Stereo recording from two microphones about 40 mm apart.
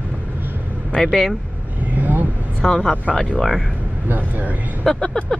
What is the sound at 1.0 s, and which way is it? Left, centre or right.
Speech, centre.